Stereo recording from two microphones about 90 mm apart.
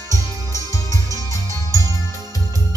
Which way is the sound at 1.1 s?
35° left (ahead or behind).